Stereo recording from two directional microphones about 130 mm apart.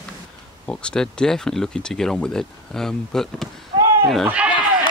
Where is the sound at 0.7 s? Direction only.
5° left (ahead or behind).